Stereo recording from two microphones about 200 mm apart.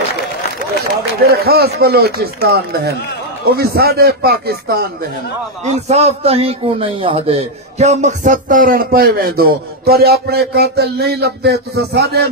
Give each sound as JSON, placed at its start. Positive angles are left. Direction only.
{"t": 1.3, "sound": "a man's voice", "side_deg": -50}
{"t": 5.7, "sound": "a man's voice", "side_deg": -30}